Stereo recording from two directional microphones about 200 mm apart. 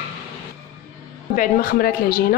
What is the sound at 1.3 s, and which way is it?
Speech, 45° left (ahead or behind).